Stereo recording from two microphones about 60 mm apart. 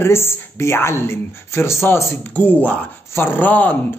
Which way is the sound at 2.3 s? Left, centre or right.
Left.